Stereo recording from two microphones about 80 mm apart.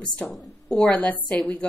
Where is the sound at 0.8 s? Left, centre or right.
Left.